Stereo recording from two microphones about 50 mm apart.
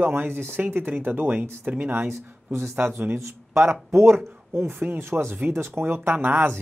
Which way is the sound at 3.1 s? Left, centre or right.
Right.